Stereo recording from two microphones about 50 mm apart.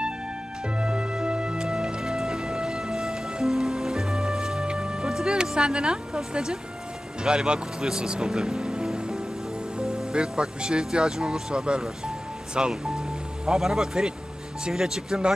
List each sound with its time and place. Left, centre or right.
0.7 s music: centre
7.2 s speech: centre